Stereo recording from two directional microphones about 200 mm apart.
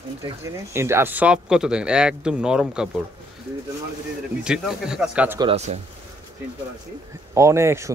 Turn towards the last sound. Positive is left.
turn(degrees=-15)  # may be behind; listen again after turning